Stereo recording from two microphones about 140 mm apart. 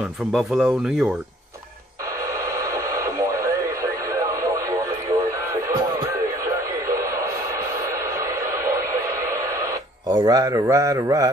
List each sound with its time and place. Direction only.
0.3 s speech: centre (ahead or behind)
2.6 s radio: 25° right (ahead or behind)
10.0 s a man's voice: 25° right (ahead or behind)